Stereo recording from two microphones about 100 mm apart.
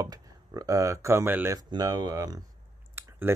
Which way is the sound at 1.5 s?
40° right (ahead or behind).